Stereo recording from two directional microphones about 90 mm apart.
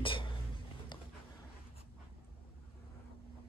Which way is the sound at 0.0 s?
70° left (ahead or behind).